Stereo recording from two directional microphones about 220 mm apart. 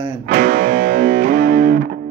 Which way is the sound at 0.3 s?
40° right (ahead or behind).